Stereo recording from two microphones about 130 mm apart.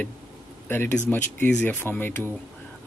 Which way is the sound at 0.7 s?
15° left (ahead or behind).